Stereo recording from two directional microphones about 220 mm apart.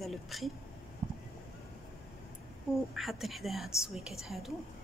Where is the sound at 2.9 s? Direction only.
Centre (ahead or behind).